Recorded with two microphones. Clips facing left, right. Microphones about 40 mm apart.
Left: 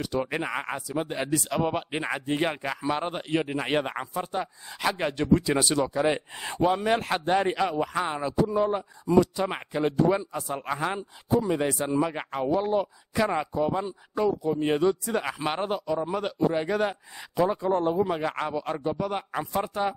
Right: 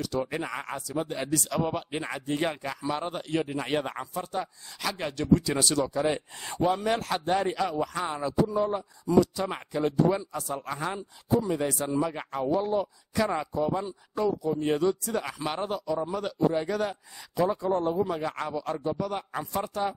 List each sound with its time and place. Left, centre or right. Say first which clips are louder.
0.0 s speech: left 2 dB; left
17.6 s speech: left 2 dB; left